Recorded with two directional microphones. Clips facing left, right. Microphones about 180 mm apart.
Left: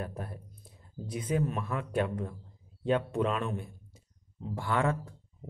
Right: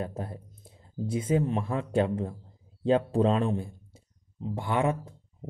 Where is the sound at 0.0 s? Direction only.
25° right (ahead or behind).